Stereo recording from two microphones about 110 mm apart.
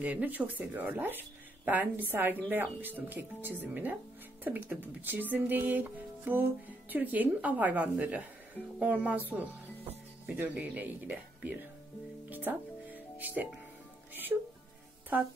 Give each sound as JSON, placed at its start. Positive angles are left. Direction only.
{"t": 0.0, "sound": "speech", "side_deg": -15}
{"t": 12.4, "sound": "music", "side_deg": -15}
{"t": 14.3, "sound": "speech", "side_deg": -20}